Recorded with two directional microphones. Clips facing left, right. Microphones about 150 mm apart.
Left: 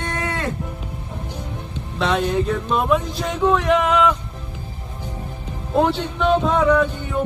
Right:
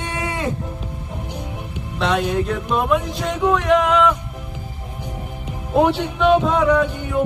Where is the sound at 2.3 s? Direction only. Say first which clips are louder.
Even; 10° right (ahead or behind).